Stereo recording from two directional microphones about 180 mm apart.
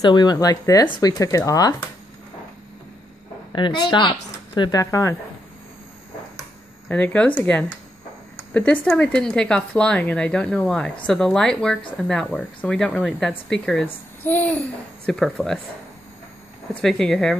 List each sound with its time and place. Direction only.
0.0 s speech: 25° left (ahead or behind)
3.5 s speech: 25° left (ahead or behind)
6.9 s speech: 10° left (ahead or behind)
8.8 s speech: 5° left (ahead or behind)
16.8 s speech: 5° left (ahead or behind)